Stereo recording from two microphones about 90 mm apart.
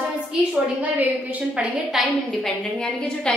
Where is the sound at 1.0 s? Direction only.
15° right (ahead or behind).